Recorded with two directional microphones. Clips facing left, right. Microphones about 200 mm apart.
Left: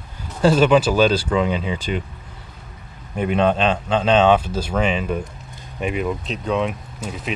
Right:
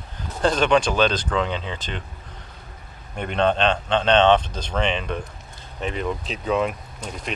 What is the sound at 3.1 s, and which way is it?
Speech, 5° left (ahead or behind).